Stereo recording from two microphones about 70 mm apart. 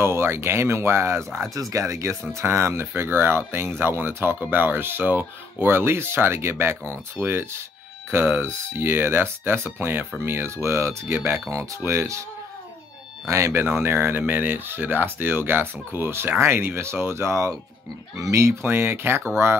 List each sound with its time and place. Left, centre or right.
0.0 s speech: right
1.5 s speech: right
13.3 s speech: right
18.7 s speech: right